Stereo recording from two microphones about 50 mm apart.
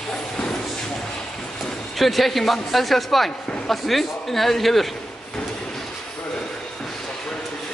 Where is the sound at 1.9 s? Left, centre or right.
Centre.